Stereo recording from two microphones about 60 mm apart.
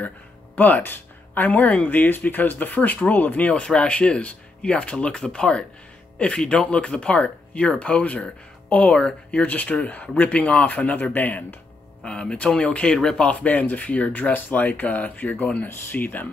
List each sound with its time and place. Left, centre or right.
0.6 s speech: left
12.0 s speech: centre